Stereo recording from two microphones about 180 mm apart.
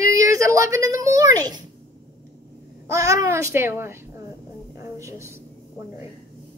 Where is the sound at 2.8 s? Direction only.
15° right (ahead or behind).